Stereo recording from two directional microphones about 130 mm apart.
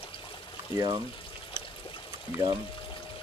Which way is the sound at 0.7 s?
35° right (ahead or behind).